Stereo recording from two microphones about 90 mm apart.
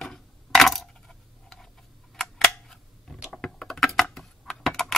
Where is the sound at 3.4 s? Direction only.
5° left (ahead or behind).